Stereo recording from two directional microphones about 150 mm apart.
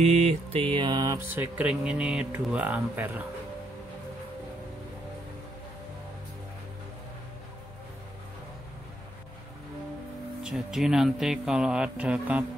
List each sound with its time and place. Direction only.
0.0 s mantra: 45° right (ahead or behind)
0.7 s speech: 25° right (ahead or behind); by 3.3 s 10° right (ahead or behind)
10.4 s speech: centre (ahead or behind)